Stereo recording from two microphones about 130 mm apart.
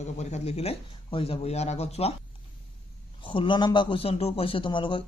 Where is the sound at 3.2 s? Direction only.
40° left (ahead or behind).